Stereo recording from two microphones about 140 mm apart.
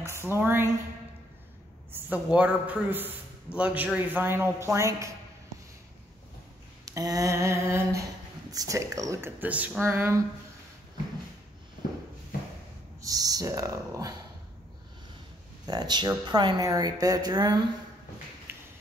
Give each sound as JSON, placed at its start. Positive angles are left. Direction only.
{"t": 0.0, "sound": "a man's voice", "side_deg": -20}
{"t": 2.0, "sound": "a man's voice", "side_deg": -10}
{"t": 6.9, "sound": "speech", "side_deg": -25}
{"t": 13.0, "sound": "speech", "side_deg": -25}
{"t": 15.6, "sound": "speech", "side_deg": -30}
{"t": 18.5, "sound": "a sound", "side_deg": -20}